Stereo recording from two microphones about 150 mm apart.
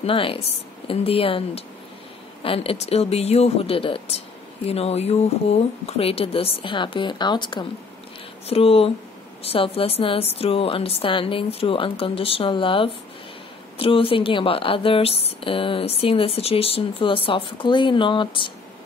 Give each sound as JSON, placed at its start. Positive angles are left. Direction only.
{"t": 0.0, "sound": "speech", "side_deg": 35}
{"t": 8.5, "sound": "speech", "side_deg": 40}